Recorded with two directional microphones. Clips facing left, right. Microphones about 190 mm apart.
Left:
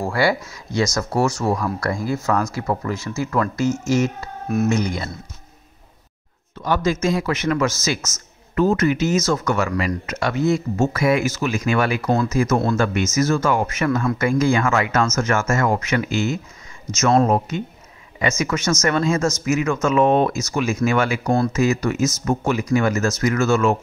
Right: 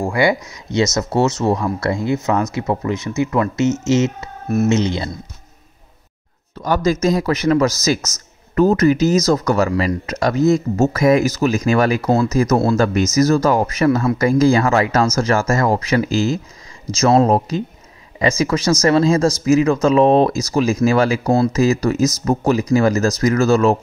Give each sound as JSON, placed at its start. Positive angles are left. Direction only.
{"t": 0.0, "sound": "speech", "side_deg": -15}
{"t": 4.2, "sound": "speech", "side_deg": -5}
{"t": 4.6, "sound": "speech", "side_deg": -25}
{"t": 6.5, "sound": "a man's voice", "side_deg": -40}